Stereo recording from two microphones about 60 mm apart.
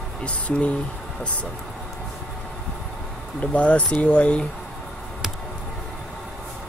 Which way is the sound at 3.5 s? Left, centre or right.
Left.